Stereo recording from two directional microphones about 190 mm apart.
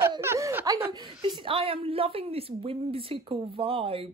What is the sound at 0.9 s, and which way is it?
A woman's voice, 25° right (ahead or behind).